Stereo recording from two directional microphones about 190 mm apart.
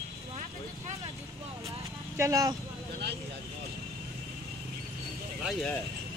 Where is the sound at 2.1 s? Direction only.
15° right (ahead or behind).